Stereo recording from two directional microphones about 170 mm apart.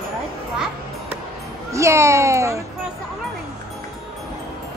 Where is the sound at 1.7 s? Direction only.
15° right (ahead or behind).